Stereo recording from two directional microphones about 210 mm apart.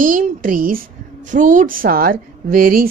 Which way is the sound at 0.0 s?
40° right (ahead or behind).